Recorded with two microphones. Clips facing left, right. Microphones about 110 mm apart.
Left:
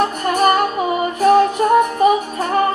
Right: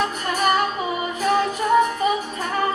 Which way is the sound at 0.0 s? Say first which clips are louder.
Left 6 dB; 55° left (ahead or behind).